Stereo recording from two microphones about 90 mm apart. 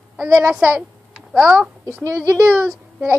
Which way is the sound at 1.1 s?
10° right (ahead or behind).